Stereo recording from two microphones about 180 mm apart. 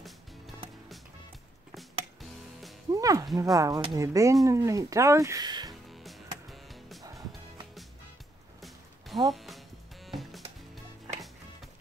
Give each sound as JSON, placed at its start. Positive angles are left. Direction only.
{"t": 2.9, "sound": "music", "side_deg": -20}
{"t": 3.3, "sound": "speech", "side_deg": -20}
{"t": 5.9, "sound": "music", "side_deg": 0}
{"t": 7.0, "sound": "music", "side_deg": -20}
{"t": 8.5, "sound": "music", "side_deg": 0}